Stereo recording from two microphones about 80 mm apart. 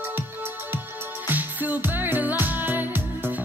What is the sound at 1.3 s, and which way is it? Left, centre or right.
Music, right.